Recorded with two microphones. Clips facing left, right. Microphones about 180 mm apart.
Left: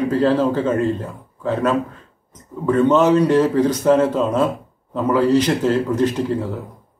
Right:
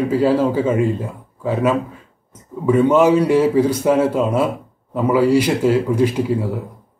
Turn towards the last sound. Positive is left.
turn(degrees=-10)  # may be behind; listen again after turning